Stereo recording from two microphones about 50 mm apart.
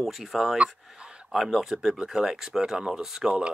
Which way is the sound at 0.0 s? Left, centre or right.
Centre.